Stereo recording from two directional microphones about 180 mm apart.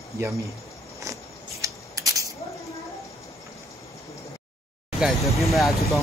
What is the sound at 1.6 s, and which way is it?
Scissors, 20° right (ahead or behind).